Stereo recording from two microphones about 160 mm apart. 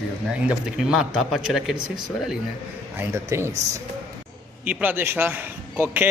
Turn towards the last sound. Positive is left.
turn(degrees=-10)  # may be behind; listen again after turning